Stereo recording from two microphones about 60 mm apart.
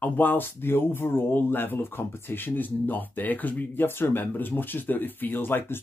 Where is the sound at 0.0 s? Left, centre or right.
Left.